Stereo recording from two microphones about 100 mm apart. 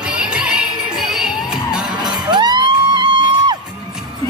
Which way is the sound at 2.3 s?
45° right (ahead or behind).